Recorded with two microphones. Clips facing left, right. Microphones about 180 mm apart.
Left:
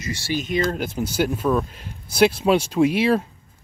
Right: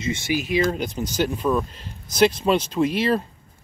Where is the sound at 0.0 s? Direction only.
20° right (ahead or behind).